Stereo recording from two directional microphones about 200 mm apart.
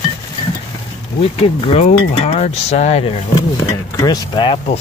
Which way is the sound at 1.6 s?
30° left (ahead or behind).